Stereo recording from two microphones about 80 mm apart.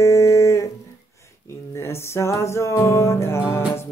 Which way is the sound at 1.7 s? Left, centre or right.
Left.